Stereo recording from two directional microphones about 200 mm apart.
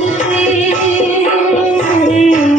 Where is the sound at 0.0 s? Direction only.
35° left (ahead or behind).